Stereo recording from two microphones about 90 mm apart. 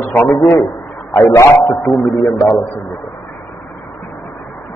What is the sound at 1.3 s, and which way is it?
Speech, 40° left (ahead or behind).